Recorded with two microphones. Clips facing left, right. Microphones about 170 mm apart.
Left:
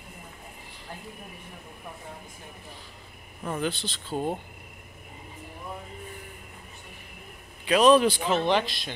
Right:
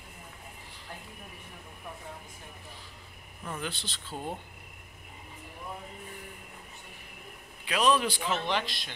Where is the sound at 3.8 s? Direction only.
25° left (ahead or behind).